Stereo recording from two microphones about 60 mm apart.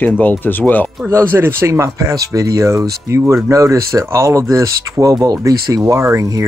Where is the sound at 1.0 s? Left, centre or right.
Right.